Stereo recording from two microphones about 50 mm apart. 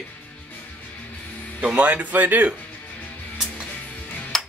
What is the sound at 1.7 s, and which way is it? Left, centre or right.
Speech, right.